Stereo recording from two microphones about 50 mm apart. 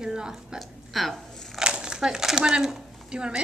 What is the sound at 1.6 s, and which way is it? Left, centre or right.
Crumpling, centre.